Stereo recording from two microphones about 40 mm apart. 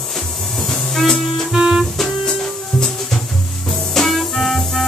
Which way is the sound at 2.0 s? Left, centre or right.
Centre.